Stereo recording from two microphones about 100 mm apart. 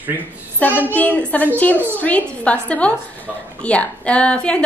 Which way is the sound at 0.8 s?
15° left (ahead or behind).